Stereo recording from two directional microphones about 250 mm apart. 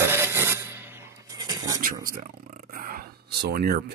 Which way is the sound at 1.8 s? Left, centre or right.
Right.